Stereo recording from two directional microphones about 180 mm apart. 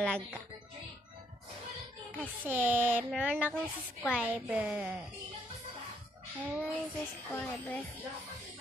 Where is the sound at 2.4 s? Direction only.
10° right (ahead or behind).